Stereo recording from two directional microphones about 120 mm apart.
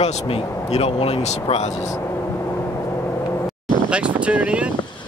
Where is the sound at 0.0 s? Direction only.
60° left (ahead or behind).